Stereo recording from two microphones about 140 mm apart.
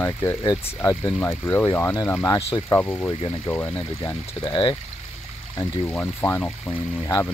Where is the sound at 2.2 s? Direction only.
25° left (ahead or behind).